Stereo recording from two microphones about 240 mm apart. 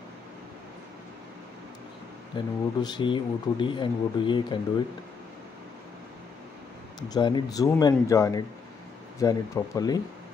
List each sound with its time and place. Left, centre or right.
2.3 s speech: centre
7.0 s speech: centre